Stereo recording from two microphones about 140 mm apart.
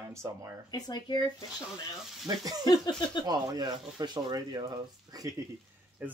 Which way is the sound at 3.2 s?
30° right (ahead or behind).